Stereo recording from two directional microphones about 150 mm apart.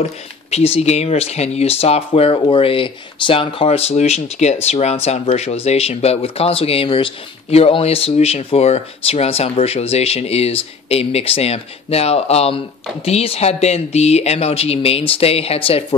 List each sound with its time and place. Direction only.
0.0 s speech: 45° left (ahead or behind)